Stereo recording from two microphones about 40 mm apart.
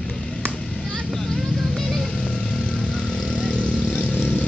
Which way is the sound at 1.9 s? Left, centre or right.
Left.